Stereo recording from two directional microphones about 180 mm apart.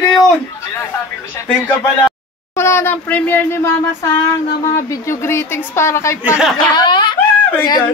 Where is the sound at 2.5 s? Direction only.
15° left (ahead or behind).